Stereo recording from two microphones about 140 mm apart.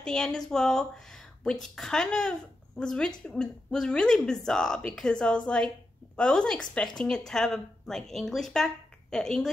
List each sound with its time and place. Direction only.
0.0 s speech: 5° left (ahead or behind)